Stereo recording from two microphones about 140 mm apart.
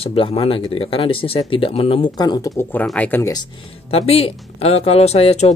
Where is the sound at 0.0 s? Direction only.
45° left (ahead or behind); by 3.3 s 15° left (ahead or behind).